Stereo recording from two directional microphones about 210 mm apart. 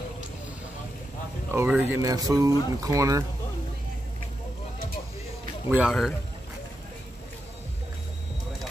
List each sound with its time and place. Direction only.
1.5 s speech: 10° right (ahead or behind)
5.7 s a man's voice: 5° right (ahead or behind)